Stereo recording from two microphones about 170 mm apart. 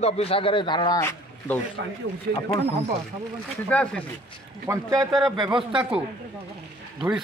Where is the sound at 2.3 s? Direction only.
90° right.